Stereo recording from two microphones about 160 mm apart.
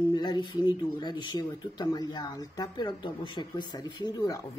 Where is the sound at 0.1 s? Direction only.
25° left (ahead or behind).